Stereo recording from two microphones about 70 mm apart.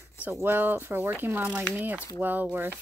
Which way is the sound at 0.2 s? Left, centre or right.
Right.